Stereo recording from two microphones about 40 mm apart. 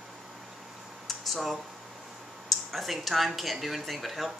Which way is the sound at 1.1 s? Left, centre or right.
Centre.